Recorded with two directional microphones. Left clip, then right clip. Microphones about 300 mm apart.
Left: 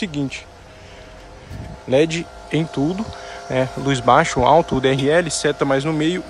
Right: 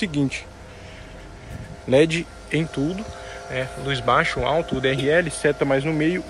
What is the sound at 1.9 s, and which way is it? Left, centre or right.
Speech, centre.